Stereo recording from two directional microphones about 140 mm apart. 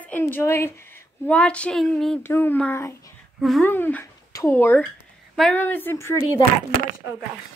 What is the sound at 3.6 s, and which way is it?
A woman's voice, 15° left (ahead or behind).